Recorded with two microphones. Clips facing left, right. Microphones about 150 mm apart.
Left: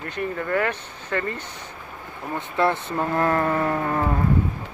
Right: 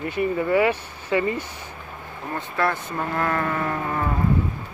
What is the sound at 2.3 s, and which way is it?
Speech, 20° left (ahead or behind).